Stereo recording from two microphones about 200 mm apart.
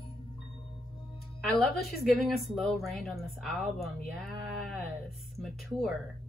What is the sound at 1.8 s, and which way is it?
A woman's voice, centre (ahead or behind).